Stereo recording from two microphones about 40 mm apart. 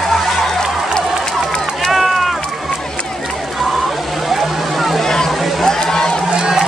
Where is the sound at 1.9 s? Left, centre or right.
Centre.